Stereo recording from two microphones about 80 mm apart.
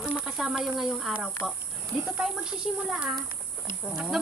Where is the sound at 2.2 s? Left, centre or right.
Centre.